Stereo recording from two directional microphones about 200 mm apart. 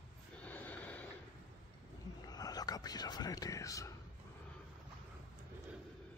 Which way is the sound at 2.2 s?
20° left (ahead or behind).